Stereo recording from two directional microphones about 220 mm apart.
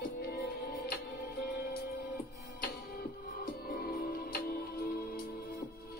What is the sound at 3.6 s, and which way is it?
Music, 45° left (ahead or behind).